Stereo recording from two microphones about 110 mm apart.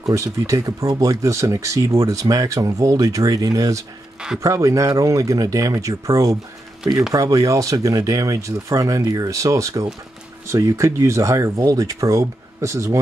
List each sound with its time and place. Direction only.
0.1 s speech: 25° right (ahead or behind)